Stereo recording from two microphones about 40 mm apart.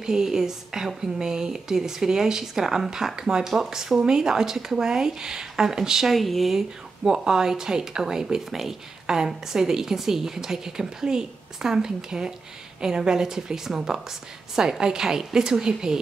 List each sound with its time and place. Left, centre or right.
0.0 s a woman's voice: centre
6.1 s speech: centre
7.1 s a woman's voice: centre